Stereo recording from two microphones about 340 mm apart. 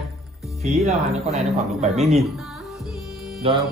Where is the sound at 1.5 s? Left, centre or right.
Centre.